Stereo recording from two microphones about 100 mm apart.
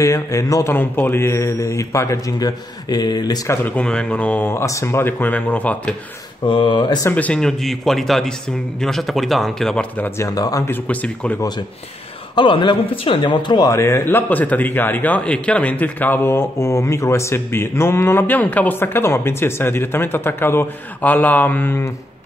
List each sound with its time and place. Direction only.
0.0 s speech: 30° left (ahead or behind)
0.7 s a man's voice: 20° left (ahead or behind)
2.3 s speech: 40° left (ahead or behind)
3.7 s speech: 10° left (ahead or behind)
6.4 s speech: 55° left (ahead or behind)
7.1 s speech: 15° left (ahead or behind)
10.1 s speech: 35° left (ahead or behind)
10.7 s speech: 15° left (ahead or behind)
12.4 s speech: 55° left (ahead or behind)
13.7 s a man's voice: 25° left (ahead or behind)